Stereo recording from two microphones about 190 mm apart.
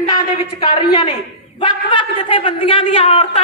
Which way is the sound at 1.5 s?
25° left (ahead or behind).